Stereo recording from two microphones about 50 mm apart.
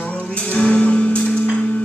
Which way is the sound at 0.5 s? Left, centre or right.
Left.